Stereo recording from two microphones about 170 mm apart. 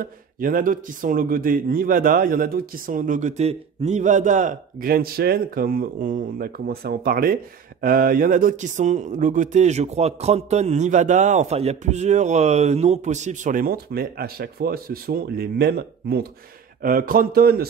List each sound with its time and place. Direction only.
0.0 s speech: 55° right (ahead or behind)
16.8 s speech: 55° right (ahead or behind)